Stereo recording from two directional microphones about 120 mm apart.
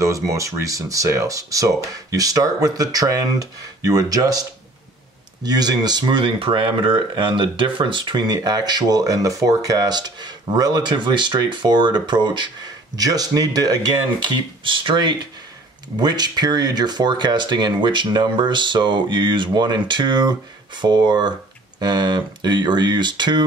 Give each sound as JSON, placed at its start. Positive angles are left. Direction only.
{"t": 0.0, "sound": "speech", "side_deg": -25}